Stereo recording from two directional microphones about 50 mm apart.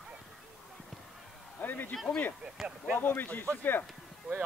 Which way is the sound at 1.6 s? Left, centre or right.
Left.